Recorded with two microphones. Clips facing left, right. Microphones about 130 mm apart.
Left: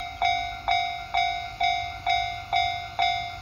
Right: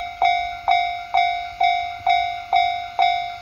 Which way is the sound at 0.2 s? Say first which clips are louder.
Right 7 dB; 50° right (ahead or behind).